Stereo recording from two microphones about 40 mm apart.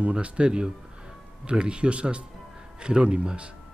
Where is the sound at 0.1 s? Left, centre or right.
Right.